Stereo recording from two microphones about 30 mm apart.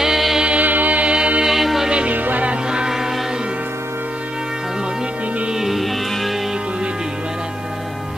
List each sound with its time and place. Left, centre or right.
0.6 s music: right
1.0 s music: right
1.4 s music: centre
2.1 s music: right
5.7 s music: centre